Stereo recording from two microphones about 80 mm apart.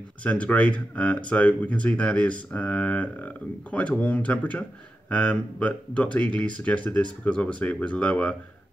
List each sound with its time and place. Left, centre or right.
0.2 s speech: centre